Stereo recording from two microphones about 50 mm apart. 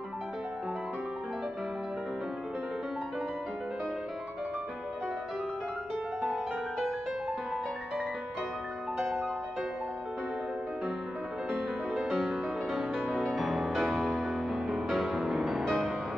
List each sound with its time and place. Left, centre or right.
11.9 s music: centre